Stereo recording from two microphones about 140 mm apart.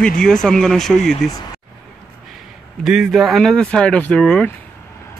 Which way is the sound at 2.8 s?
5° right (ahead or behind).